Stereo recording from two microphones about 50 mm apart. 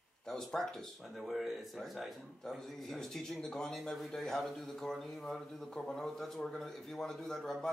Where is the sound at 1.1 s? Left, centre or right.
Centre.